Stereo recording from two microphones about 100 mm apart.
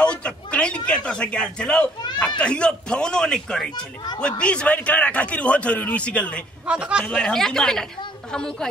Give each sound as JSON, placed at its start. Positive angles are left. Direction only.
{"t": 0.0, "sound": "a sound", "side_deg": 10}
{"t": 2.1, "sound": "a man's voice", "side_deg": 10}
{"t": 3.7, "sound": "speech", "side_deg": 45}
{"t": 4.2, "sound": "a man's voice", "side_deg": 10}
{"t": 6.6, "sound": "a man's voice", "side_deg": -10}
{"t": 7.1, "sound": "a man's voice", "side_deg": 5}